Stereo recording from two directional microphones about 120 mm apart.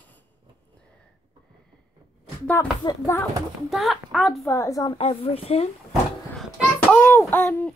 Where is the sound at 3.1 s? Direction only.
25° left (ahead or behind).